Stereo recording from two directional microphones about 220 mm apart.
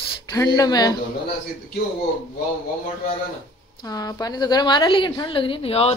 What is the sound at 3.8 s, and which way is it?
Speech, 15° left (ahead or behind).